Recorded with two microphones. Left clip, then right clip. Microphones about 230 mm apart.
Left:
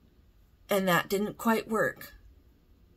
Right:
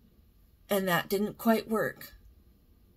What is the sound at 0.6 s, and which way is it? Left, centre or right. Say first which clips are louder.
Speech: left 2 dB; centre.